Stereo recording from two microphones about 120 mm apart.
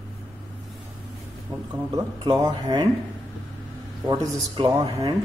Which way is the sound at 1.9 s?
35° right (ahead or behind).